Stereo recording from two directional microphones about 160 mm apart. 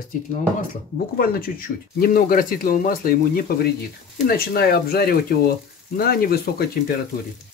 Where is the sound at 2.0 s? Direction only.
65° left (ahead or behind).